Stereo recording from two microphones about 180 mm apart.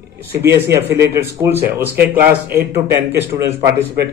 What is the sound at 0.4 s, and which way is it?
A man's voice, 15° right (ahead or behind).